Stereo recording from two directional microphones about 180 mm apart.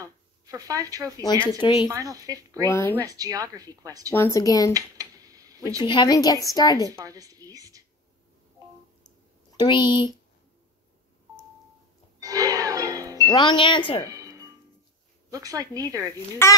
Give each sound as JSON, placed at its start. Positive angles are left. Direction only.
{"t": 0.0, "sound": "speech", "side_deg": -20}
{"t": 2.6, "sound": "a woman's voice", "side_deg": 15}
{"t": 3.0, "sound": "speech", "side_deg": -20}
{"t": 4.1, "sound": "a woman's voice", "side_deg": 15}
{"t": 4.7, "sound": "dishes", "side_deg": -20}
{"t": 5.9, "sound": "a woman's voice", "side_deg": 25}
{"t": 6.9, "sound": "speech", "side_deg": -20}
{"t": 9.6, "sound": "a woman's voice", "side_deg": 25}
{"t": 12.2, "sound": "music", "side_deg": -20}
{"t": 13.3, "sound": "a woman's voice", "side_deg": 25}
{"t": 14.0, "sound": "music", "side_deg": -20}
{"t": 15.2, "sound": "speech", "side_deg": -20}
{"t": 16.4, "sound": "a woman's voice", "side_deg": 15}